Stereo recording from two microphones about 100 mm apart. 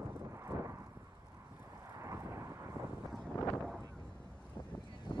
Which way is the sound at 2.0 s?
30° right (ahead or behind).